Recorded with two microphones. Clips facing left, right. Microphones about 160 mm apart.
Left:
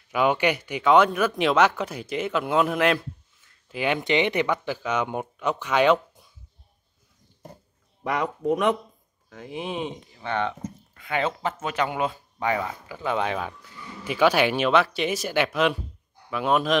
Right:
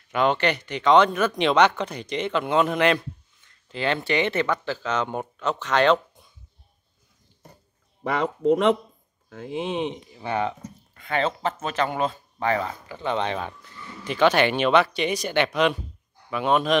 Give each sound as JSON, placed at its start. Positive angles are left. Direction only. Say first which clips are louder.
{"t": 0.1, "sound": "speech", "louder": "even", "side_deg": 10}
{"t": 9.3, "sound": "speech", "louder": "right 4 dB", "side_deg": -25}
{"t": 11.0, "sound": "speech", "louder": "right 1 dB", "side_deg": 10}